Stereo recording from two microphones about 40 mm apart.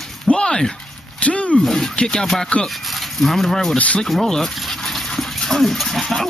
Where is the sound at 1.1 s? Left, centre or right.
Left.